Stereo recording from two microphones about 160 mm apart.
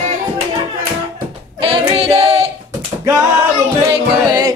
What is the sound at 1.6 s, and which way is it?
Female singing, 35° right (ahead or behind).